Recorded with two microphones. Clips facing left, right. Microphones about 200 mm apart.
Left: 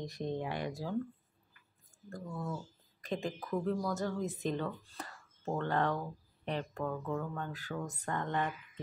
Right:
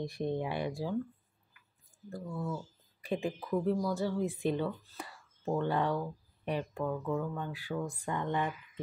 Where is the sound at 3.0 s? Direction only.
10° right (ahead or behind).